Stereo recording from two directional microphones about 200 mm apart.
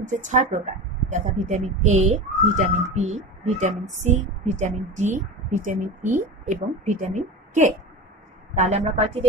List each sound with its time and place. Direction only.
0.0 s a woman's voice: 40° right (ahead or behind)